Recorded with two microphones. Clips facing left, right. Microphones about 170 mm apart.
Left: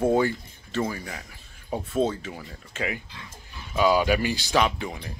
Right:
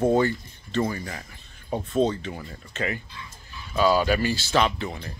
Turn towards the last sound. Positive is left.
turn(degrees=10)  # may be behind; listen again after turning